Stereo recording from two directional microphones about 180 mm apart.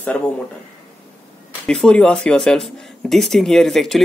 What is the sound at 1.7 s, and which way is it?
Speech, 5° left (ahead or behind).